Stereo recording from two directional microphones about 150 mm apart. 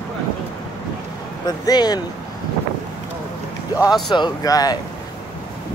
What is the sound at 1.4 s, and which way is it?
Speech, 25° left (ahead or behind).